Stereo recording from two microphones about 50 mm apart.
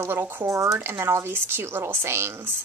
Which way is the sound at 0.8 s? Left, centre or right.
Right.